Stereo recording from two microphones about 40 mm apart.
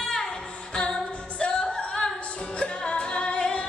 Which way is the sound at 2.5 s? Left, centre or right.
Left.